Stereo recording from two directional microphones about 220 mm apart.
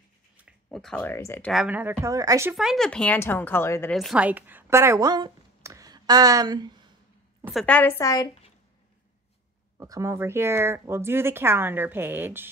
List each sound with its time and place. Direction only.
0.4 s speech: centre (ahead or behind)
1.5 s speech: 5° right (ahead or behind)
2.5 s speech: centre (ahead or behind)
3.9 s speech: centre (ahead or behind); by 6.9 s 20° right (ahead or behind)
7.4 s speech: 5° left (ahead or behind)
9.8 s speech: 15° right (ahead or behind)